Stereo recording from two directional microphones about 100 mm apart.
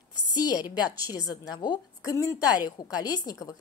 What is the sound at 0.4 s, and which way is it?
A woman's voice, 45° left (ahead or behind).